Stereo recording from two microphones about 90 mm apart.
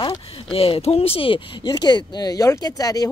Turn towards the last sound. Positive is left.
turn(degrees=45)  # may be behind; listen again after turning